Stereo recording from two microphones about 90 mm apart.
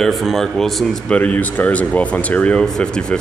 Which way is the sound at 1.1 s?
20° left (ahead or behind).